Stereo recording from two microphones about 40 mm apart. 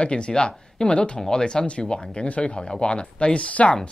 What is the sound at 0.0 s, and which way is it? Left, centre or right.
Speech, left.